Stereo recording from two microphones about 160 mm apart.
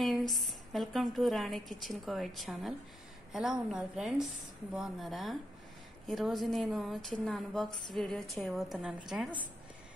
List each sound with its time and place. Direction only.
0.3 s a woman's voice: centre (ahead or behind)